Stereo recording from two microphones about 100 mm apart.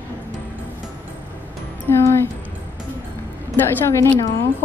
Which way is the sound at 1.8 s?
25° left (ahead or behind).